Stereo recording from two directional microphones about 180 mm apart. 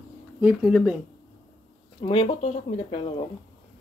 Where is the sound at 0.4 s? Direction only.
5° right (ahead or behind).